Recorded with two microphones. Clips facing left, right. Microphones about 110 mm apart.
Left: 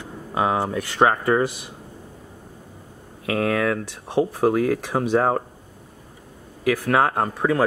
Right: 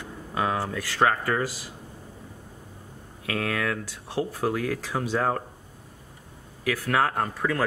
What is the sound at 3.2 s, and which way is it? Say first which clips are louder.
Speech: left 7 dB; 25° left (ahead or behind).